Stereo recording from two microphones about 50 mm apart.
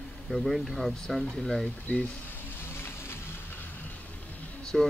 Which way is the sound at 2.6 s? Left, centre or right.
Left.